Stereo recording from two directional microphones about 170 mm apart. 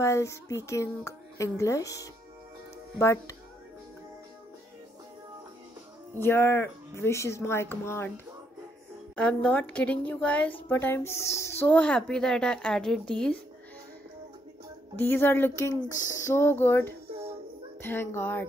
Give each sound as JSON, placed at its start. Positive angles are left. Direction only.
{"t": 0.0, "sound": "a child's voice", "side_deg": 15}
{"t": 6.1, "sound": "a child's voice", "side_deg": 15}
{"t": 9.1, "sound": "a child's voice", "side_deg": 5}
{"t": 15.0, "sound": "a child's voice", "side_deg": 10}